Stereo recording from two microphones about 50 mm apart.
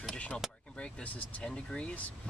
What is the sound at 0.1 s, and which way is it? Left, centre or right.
Vehicle, left.